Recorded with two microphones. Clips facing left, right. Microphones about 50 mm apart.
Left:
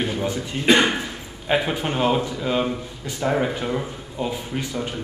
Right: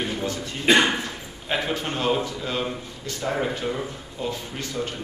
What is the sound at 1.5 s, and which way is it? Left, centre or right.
A man's voice, centre.